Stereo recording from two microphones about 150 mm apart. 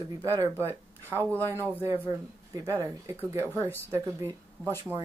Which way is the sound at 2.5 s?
25° right (ahead or behind).